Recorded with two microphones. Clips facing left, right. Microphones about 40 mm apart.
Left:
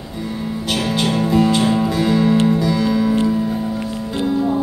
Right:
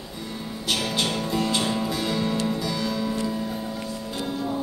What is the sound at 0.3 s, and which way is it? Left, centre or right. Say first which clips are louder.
Music: left 6 dB; centre.